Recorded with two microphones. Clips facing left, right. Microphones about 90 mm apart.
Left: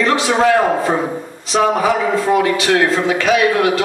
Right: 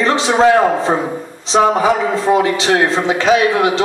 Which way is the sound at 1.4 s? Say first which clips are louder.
Right 2 dB; 25° right (ahead or behind).